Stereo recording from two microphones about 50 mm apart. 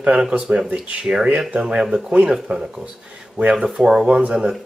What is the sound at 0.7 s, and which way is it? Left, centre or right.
Speech, centre.